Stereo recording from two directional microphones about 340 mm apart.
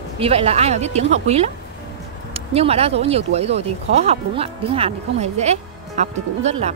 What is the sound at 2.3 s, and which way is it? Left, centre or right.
Speech, centre.